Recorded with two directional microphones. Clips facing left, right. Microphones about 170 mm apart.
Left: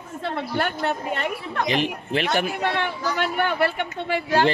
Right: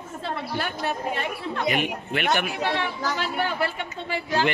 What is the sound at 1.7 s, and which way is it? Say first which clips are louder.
Speech: left 2 dB; 30° left (ahead or behind).